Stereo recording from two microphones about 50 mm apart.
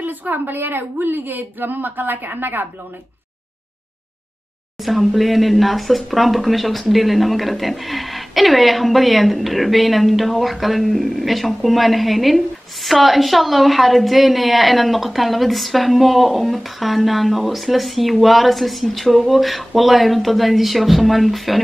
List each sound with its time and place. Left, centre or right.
0.0 s a woman's voice: right
4.8 s speech: centre